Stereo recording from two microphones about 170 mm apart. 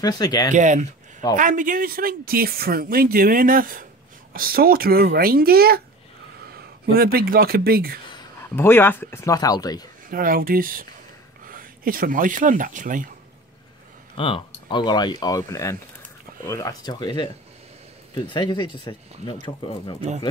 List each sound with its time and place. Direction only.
0.0 s speech: 25° left (ahead or behind)
0.5 s speech: 45° right (ahead or behind); by 8.0 s 60° right (ahead or behind)
8.5 s speech: 15° left (ahead or behind)
10.0 s speech: 55° right (ahead or behind)
14.1 s speech: 30° left (ahead or behind)